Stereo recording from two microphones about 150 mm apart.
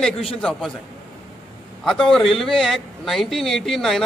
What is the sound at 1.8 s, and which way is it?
A man's voice, centre (ahead or behind).